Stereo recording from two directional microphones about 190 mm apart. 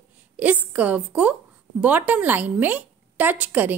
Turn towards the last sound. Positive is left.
turn(degrees=-10)  # may be behind; listen again after turning